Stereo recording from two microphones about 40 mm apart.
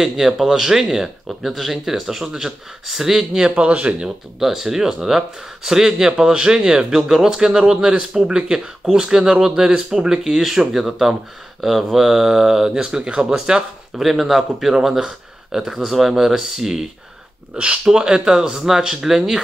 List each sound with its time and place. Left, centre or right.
0.0 s speech: centre
3.5 s speech: right
4.4 s speech: centre
13.9 s speech: centre
17.6 s speech: right